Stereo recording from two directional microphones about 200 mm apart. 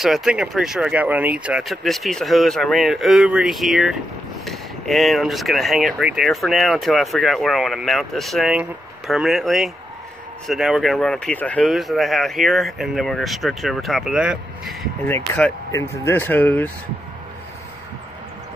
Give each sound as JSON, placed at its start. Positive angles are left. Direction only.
{"t": 0.0, "sound": "speech", "side_deg": 0}